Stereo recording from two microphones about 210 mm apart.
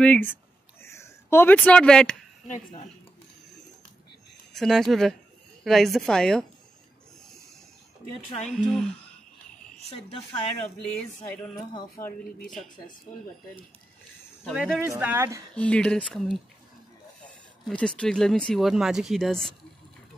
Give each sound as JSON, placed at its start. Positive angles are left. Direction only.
{"t": 0.0, "sound": "speech", "side_deg": 5}
{"t": 0.8, "sound": "a sound", "side_deg": 15}
{"t": 4.6, "sound": "speech", "side_deg": 0}
{"t": 8.6, "sound": "speech", "side_deg": 0}
{"t": 9.8, "sound": "speech", "side_deg": 30}
{"t": 10.8, "sound": "speech", "side_deg": 5}
{"t": 14.4, "sound": "speech", "side_deg": 0}
{"t": 15.5, "sound": "speech", "side_deg": 5}
{"t": 17.6, "sound": "speech", "side_deg": 5}